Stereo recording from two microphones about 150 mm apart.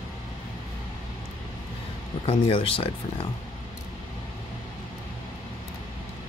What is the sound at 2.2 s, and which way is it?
Speech, 40° left (ahead or behind).